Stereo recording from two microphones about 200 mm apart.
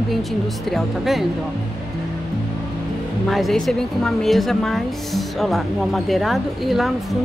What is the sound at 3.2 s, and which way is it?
A woman's voice, centre (ahead or behind).